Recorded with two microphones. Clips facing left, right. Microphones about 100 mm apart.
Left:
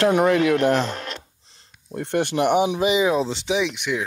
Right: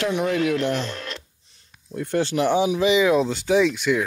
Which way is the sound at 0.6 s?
40° left (ahead or behind).